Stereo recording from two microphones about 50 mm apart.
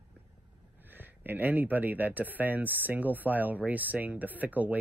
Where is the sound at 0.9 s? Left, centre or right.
Right.